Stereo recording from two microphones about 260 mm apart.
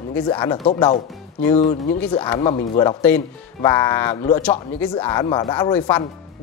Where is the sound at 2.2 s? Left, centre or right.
Centre.